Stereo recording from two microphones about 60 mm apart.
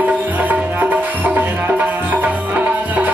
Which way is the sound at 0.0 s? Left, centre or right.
Right.